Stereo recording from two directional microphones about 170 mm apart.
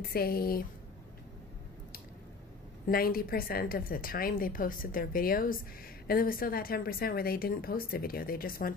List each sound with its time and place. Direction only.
0.1 s a woman's voice: 60° left (ahead or behind)
2.9 s a woman's voice: 60° left (ahead or behind)